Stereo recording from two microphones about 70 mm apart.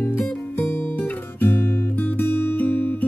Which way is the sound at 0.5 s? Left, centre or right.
Left.